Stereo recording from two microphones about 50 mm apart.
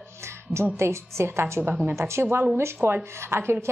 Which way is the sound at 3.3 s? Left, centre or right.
Right.